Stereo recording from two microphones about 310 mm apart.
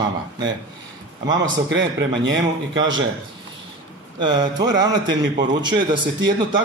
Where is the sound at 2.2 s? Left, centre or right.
Right.